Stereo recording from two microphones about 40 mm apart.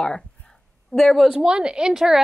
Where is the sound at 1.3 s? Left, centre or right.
Right.